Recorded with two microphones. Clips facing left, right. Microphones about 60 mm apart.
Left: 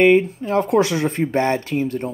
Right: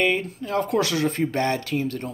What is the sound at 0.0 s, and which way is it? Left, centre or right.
Speech, left.